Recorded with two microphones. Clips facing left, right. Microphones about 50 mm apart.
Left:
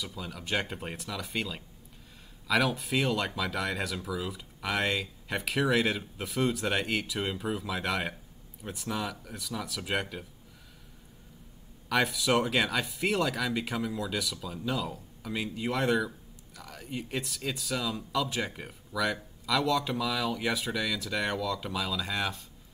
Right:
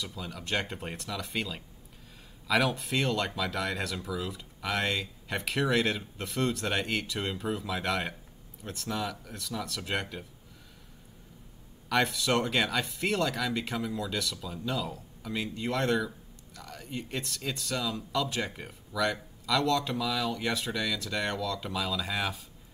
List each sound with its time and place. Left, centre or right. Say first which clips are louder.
0.0 s speech: even; centre
11.9 s speech: left 1 dB; centre